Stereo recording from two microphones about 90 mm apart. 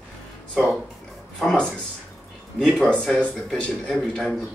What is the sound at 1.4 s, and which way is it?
Speech, centre (ahead or behind).